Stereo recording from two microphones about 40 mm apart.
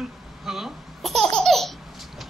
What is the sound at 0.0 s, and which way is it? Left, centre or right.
Babbling, centre.